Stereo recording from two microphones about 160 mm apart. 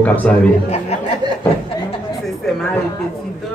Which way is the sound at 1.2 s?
25° right (ahead or behind).